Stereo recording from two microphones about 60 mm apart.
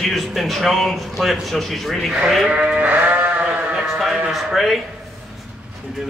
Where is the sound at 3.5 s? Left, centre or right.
Centre.